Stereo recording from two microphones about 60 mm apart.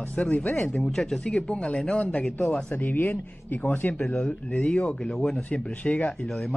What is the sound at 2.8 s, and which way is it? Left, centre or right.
Speech, left.